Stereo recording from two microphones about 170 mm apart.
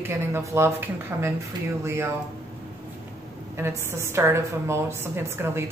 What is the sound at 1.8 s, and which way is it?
Speech, 15° right (ahead or behind).